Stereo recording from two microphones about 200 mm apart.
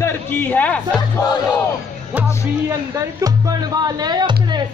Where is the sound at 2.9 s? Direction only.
15° right (ahead or behind).